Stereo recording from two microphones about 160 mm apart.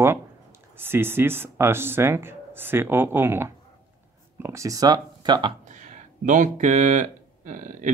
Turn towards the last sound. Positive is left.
turn(degrees=-50)  # may be behind; listen again after turning